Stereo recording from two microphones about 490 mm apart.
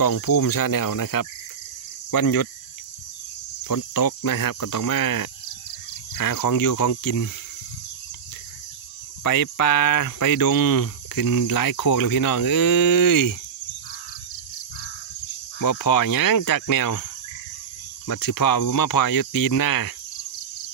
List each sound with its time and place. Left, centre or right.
0.0 s speech: left
3.6 s speech: left
9.2 s speech: left
15.6 s speech: left
18.0 s speech: left